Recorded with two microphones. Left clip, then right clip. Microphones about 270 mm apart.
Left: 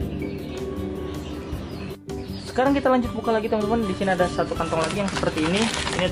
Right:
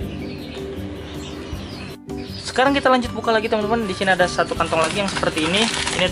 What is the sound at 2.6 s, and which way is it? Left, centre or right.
Speech, centre.